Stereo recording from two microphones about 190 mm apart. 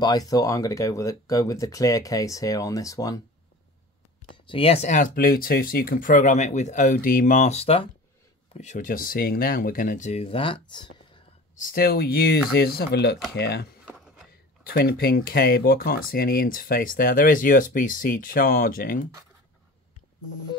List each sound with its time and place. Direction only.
0.0 s speech: 20° left (ahead or behind)
4.5 s speech: 30° left (ahead or behind)
8.5 s speech: 40° left (ahead or behind); by 10.9 s 25° left (ahead or behind)
11.5 s speech: 45° left (ahead or behind)
13.8 s a sound: centre (ahead or behind)
14.7 s speech: 50° left (ahead or behind)